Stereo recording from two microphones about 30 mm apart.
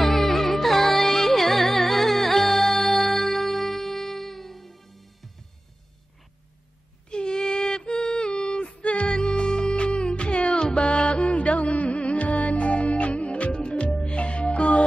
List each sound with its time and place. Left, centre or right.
0.0 s music: centre
7.1 s a sound: left
8.6 s music: left
9.2 s music: left